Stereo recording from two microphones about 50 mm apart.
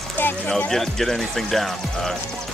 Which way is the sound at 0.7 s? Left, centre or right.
Centre.